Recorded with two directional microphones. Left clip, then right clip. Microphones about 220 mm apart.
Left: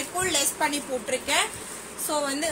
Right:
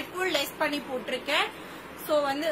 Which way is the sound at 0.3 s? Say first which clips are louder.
Left 2 dB; 15° right (ahead or behind).